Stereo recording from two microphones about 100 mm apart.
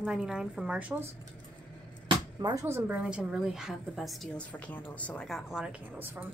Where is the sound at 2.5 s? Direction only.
30° right (ahead or behind).